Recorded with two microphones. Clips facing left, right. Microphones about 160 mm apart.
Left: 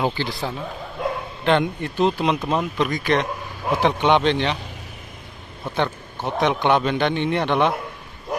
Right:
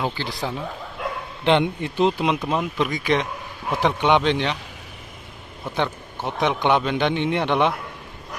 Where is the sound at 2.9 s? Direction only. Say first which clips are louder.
Left 1 dB; 50° left (ahead or behind).